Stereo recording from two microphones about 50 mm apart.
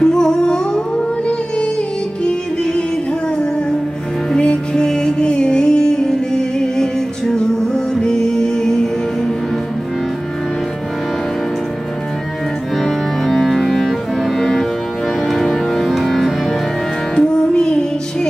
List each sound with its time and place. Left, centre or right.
0.0 s music: centre
2.2 s music: centre
4.4 s music: centre
12.7 s music: centre
17.1 s music: centre